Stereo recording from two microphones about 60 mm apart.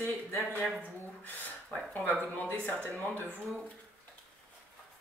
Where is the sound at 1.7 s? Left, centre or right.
Left.